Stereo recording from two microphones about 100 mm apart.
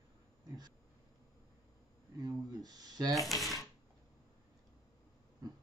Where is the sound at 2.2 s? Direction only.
40° right (ahead or behind).